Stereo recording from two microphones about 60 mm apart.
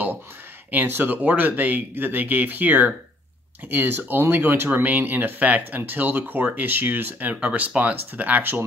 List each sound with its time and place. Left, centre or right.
0.8 s speech: right